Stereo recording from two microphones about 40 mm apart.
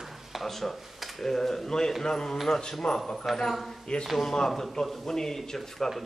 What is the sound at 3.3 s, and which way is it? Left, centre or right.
Speech, centre.